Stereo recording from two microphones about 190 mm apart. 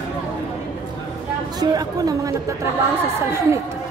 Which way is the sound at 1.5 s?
20° right (ahead or behind).